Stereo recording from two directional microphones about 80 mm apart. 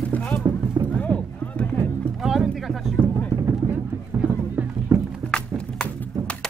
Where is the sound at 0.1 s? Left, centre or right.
Centre.